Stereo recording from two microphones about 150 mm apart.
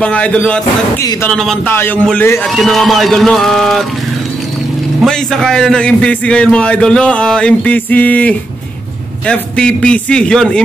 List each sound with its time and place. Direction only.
0.0 s a man's voice: 10° left (ahead or behind)
1.0 s speech: 25° left (ahead or behind)
1.3 s speech: 5° left (ahead or behind)
1.7 s a man's voice: 15° left (ahead or behind)
2.4 s speech: centre (ahead or behind)
5.0 s a man's voice: 5° left (ahead or behind)